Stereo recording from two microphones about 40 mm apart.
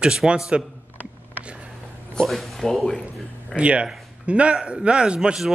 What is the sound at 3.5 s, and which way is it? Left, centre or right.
Speech, right.